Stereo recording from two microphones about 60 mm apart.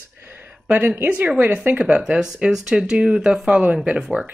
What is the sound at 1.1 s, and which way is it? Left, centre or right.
Speech, right.